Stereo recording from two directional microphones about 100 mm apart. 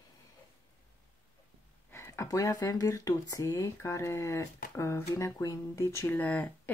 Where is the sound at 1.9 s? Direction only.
25° left (ahead or behind).